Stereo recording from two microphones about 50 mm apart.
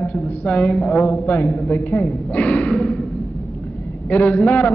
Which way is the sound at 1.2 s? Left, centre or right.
Left.